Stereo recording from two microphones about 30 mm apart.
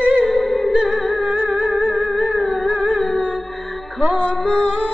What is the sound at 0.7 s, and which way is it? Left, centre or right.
Music, right.